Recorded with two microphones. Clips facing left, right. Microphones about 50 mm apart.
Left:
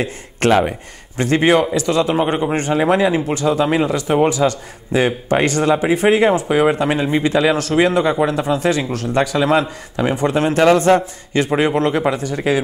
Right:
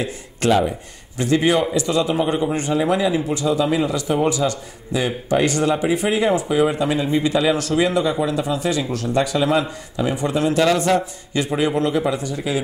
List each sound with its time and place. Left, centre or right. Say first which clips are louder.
0.0 s a man's voice: left 3 dB; left